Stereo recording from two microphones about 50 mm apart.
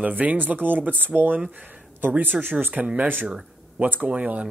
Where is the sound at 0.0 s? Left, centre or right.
Right.